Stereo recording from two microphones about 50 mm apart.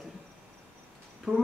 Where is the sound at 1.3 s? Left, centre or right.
Centre.